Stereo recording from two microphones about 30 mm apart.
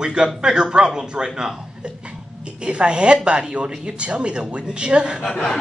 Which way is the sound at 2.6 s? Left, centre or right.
Right.